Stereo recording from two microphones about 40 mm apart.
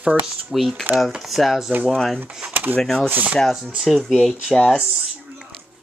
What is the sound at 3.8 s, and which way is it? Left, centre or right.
Speech, centre.